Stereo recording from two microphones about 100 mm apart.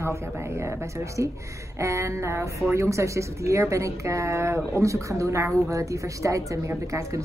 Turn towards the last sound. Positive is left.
turn(degrees=-30)  # may be behind; listen again after turning